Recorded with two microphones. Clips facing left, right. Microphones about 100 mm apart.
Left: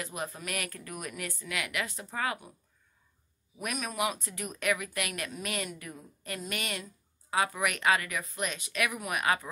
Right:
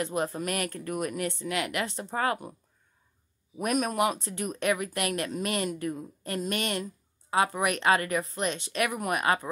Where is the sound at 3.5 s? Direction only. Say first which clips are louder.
Right 7 dB; 40° right (ahead or behind).